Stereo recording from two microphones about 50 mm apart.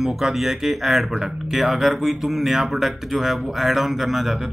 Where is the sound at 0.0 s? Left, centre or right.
Centre.